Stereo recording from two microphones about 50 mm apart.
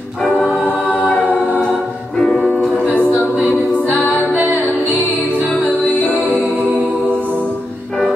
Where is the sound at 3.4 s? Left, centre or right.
Left.